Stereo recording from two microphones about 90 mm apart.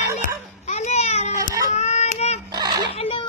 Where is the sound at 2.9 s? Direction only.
90° left.